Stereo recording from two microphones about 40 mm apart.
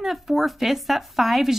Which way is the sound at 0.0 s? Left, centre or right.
Centre.